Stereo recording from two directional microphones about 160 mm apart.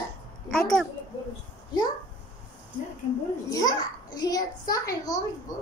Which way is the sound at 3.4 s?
25° left (ahead or behind).